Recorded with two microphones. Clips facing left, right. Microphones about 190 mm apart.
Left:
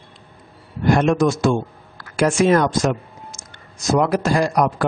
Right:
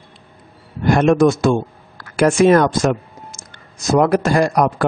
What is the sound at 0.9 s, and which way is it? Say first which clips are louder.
Speech: right 5 dB; 55° right (ahead or behind).